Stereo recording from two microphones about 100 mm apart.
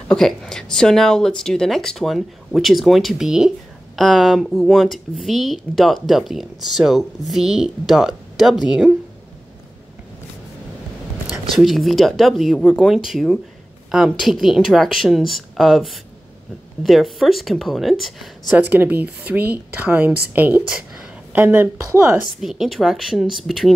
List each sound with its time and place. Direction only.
0.1 s speech: 5° left (ahead or behind)
11.5 s speech: centre (ahead or behind)
18.5 s a woman's voice: 20° right (ahead or behind)
22.4 s speech: 5° right (ahead or behind)